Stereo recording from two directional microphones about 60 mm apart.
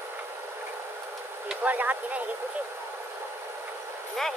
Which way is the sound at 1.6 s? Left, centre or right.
Right.